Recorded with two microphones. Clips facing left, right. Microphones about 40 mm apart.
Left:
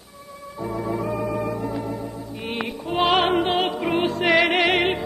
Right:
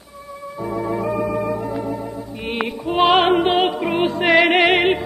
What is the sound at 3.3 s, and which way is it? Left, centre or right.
Music, centre.